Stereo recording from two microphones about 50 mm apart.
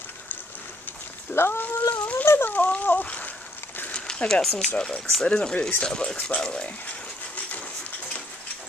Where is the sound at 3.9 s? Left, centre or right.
Left.